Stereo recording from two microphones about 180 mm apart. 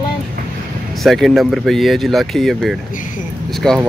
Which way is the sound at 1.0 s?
Centre (ahead or behind).